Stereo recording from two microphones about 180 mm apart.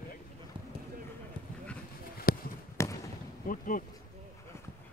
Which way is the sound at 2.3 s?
55° left (ahead or behind).